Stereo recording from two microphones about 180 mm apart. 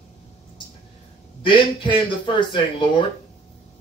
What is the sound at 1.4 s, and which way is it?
Speech, 25° left (ahead or behind).